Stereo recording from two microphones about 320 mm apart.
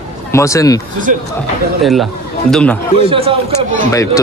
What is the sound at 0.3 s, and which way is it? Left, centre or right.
Speech, centre.